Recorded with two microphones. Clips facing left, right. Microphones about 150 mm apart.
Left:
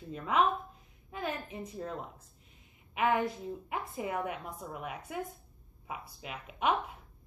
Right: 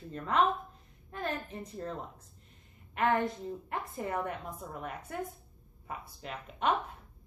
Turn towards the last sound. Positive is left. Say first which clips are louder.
# even
turn(degrees=5)  # may be behind; listen again after turning